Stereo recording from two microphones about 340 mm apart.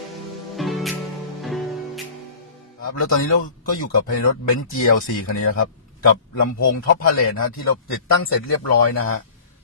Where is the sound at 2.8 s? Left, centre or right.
Left.